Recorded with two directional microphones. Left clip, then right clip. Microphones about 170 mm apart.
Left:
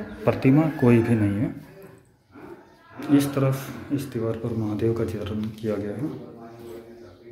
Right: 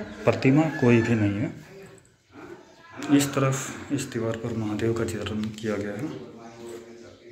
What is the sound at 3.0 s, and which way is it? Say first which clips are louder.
Speech: left 1 dB; 15° left (ahead or behind).